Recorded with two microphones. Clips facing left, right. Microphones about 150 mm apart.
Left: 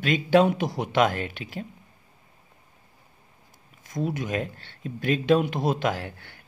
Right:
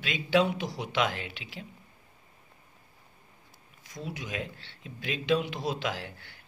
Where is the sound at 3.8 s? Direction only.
50° left (ahead or behind).